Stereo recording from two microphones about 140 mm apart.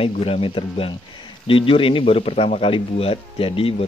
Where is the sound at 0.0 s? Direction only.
45° left (ahead or behind).